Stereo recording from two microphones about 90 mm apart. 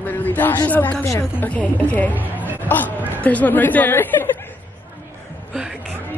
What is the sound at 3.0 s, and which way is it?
Speech, 20° right (ahead or behind).